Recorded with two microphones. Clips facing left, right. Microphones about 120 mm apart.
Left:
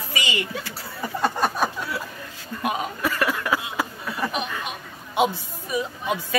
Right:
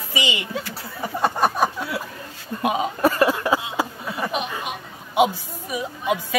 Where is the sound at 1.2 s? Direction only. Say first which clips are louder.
Right 3 dB; 15° right (ahead or behind).